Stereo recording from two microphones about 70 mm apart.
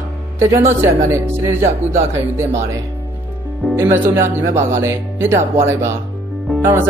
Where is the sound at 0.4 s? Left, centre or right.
Right.